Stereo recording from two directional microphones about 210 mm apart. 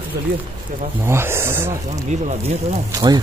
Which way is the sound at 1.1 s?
10° right (ahead or behind).